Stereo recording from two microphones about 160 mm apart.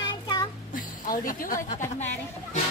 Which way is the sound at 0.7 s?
60° left (ahead or behind).